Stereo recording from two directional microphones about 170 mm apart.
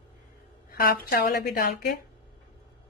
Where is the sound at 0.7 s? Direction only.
60° left (ahead or behind).